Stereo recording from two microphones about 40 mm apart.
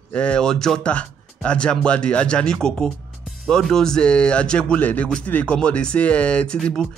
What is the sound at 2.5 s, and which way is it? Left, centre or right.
Speech, centre.